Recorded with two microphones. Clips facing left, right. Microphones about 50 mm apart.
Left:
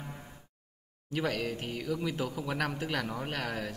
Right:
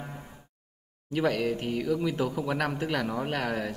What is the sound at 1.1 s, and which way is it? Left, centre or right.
Speech, centre.